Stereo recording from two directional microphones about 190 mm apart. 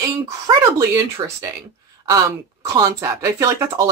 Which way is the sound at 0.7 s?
15° right (ahead or behind).